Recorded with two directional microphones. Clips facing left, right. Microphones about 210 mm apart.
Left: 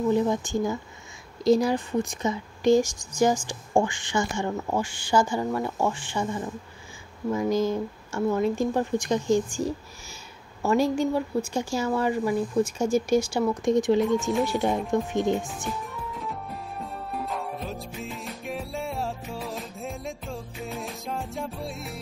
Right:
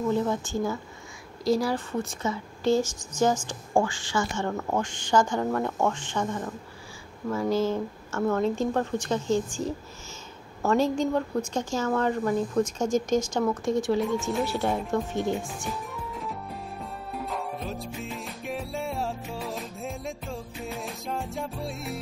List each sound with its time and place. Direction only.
0.1 s speech: 15° left (ahead or behind)
16.2 s music: centre (ahead or behind)